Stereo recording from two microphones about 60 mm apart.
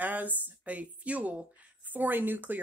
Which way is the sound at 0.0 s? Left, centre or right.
Right.